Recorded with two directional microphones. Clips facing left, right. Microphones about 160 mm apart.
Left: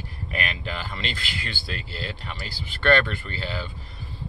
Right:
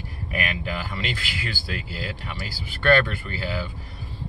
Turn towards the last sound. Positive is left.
turn(degrees=-10)  # may be behind; listen again after turning